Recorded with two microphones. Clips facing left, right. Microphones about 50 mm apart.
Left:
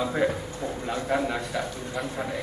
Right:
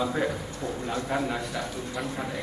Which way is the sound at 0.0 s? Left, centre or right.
Centre.